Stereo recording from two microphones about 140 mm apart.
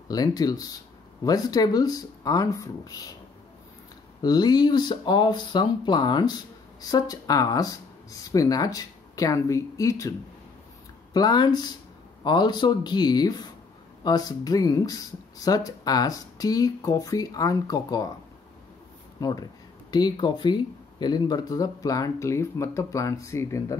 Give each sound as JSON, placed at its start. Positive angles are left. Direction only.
{"t": 0.1, "sound": "speech", "side_deg": 30}
{"t": 4.2, "sound": "speech", "side_deg": 30}
{"t": 11.1, "sound": "speech", "side_deg": 30}
{"t": 19.1, "sound": "speech", "side_deg": 25}